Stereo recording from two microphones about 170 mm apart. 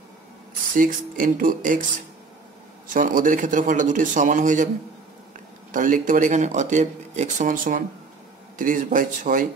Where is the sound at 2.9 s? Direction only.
50° right (ahead or behind).